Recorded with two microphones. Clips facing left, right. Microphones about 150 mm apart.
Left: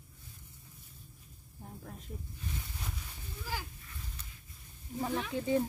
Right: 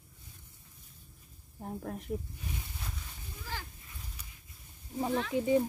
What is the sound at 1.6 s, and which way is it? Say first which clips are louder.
Speech: right 9 dB; 65° right (ahead or behind).